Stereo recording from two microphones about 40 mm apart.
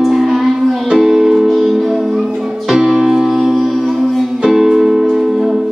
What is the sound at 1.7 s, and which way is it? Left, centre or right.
Music, centre.